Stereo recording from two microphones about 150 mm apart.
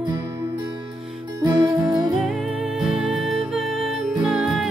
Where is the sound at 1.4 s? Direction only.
30° right (ahead or behind).